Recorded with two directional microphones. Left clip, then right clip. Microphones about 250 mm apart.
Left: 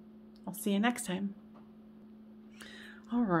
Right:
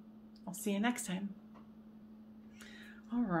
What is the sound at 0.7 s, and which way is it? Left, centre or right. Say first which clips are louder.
Speech: left 4 dB; left.